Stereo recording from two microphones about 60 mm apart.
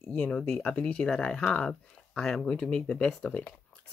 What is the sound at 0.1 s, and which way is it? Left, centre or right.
Speech, centre.